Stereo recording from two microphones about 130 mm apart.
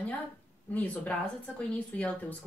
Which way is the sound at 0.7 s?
10° left (ahead or behind).